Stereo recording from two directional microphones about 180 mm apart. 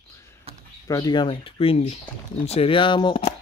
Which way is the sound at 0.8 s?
20° left (ahead or behind).